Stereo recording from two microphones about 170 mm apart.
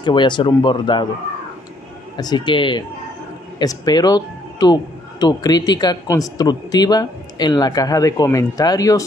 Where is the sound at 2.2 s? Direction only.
25° left (ahead or behind).